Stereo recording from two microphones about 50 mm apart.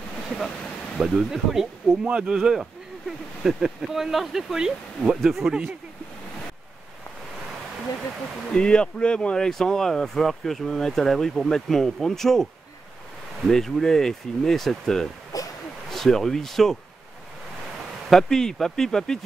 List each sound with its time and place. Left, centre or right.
0.9 s speech: centre
2.0 s speech: centre
2.3 s speech: centre
5.1 s speech: centre
8.5 s speech: centre
9.5 s speech: centre
13.5 s speech: centre
18.1 s speech: centre